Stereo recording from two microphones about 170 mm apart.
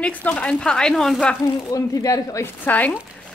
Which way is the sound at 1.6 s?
20° left (ahead or behind).